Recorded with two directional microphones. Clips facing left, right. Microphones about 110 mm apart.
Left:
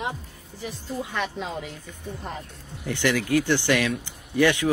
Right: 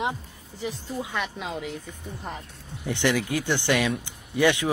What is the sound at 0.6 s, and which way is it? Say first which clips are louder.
Speech: right 1 dB; 15° right (ahead or behind).